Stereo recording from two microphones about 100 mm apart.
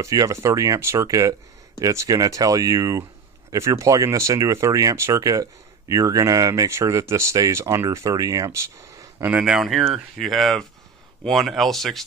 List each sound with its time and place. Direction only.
0.0 s speech: 35° right (ahead or behind)
9.4 s speech: 5° right (ahead or behind)